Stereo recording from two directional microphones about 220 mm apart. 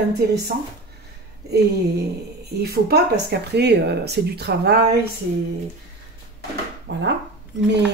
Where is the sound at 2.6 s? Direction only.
45° right (ahead or behind).